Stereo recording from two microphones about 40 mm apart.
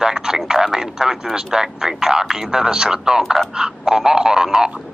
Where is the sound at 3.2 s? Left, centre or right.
Centre.